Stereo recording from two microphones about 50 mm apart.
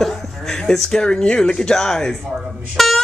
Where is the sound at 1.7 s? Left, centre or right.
Centre.